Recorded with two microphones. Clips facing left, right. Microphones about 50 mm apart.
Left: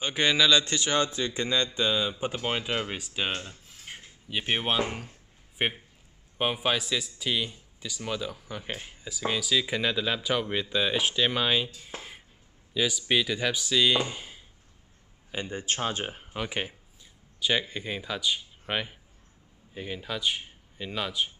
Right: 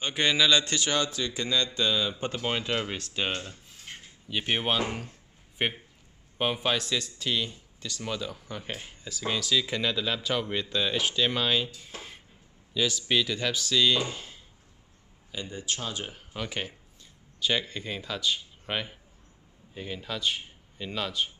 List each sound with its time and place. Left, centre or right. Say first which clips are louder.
0.0 s speech: left 1 dB; centre
0.7 s speech: left 1 dB; left
15.3 s speech: left 3 dB; left
16.3 s speech: left 2 dB; centre